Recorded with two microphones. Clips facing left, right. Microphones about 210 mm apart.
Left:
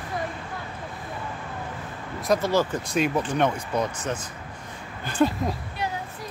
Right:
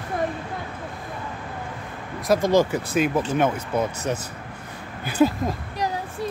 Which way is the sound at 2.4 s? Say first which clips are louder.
Right 4 dB; 15° right (ahead or behind).